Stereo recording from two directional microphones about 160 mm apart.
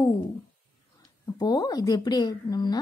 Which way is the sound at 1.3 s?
25° left (ahead or behind).